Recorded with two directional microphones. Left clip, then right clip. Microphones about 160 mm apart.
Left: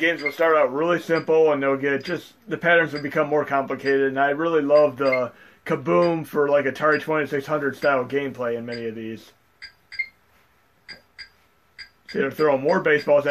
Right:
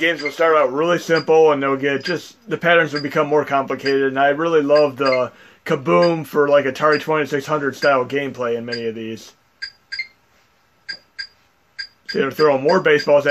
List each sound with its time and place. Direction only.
0.0 s speech: 50° right (ahead or behind)
12.1 s speech: 50° right (ahead or behind)